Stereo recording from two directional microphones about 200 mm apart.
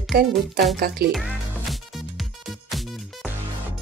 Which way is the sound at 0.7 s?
50° right (ahead or behind).